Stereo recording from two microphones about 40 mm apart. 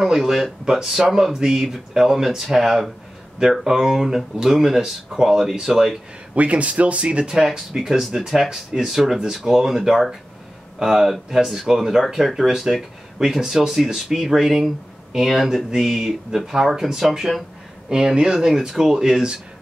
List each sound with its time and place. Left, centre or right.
0.0 s speech: centre
6.3 s speech: right
7.3 s speech: centre
17.8 s speech: centre